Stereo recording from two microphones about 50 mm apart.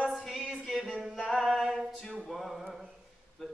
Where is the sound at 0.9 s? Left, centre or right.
Centre.